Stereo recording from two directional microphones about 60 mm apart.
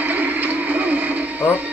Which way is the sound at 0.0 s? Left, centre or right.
Right.